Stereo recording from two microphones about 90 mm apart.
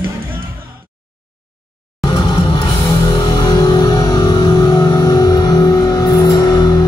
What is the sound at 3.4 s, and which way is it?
Music, 50° left (ahead or behind).